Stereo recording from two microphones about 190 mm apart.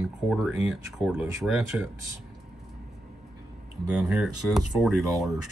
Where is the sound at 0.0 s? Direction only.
Centre (ahead or behind).